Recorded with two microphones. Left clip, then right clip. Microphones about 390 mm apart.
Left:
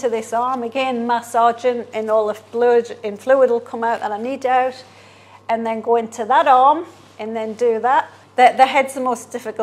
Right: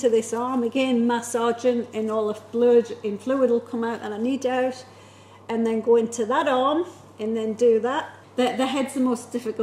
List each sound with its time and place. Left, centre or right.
0.0 s a woman's voice: left